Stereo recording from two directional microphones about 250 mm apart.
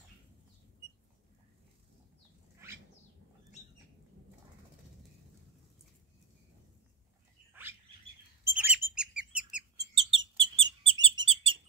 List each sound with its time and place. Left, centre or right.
8.5 s bird: centre
9.9 s bird: right